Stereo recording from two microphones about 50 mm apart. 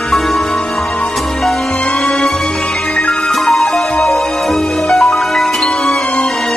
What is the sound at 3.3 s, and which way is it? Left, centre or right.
Music, centre.